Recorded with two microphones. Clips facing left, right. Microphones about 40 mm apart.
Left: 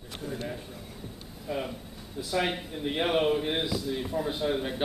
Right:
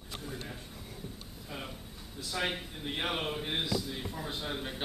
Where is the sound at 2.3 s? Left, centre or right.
Centre.